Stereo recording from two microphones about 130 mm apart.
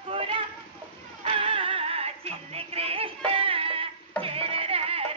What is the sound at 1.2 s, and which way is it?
Music, 45° right (ahead or behind).